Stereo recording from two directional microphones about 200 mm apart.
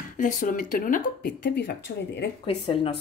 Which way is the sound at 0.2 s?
40° left (ahead or behind).